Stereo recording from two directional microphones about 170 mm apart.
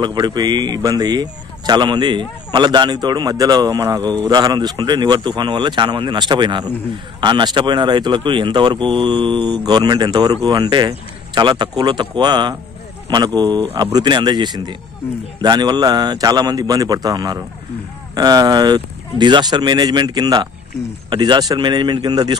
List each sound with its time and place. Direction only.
0.0 s speech: 25° right (ahead or behind)
4.0 s a man's voice: 10° left (ahead or behind)
4.3 s speech: 25° right (ahead or behind)